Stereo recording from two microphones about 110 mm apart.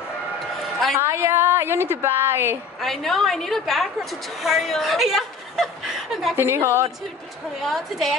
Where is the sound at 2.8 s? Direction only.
5° left (ahead or behind).